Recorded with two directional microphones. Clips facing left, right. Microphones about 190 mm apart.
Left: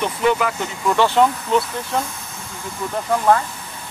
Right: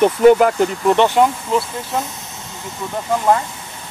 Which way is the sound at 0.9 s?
20° right (ahead or behind).